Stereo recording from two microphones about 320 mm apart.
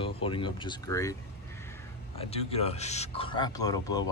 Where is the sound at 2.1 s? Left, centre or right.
Centre.